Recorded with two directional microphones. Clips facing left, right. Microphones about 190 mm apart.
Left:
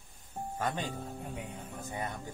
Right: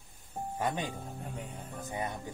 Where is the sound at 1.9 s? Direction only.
15° right (ahead or behind).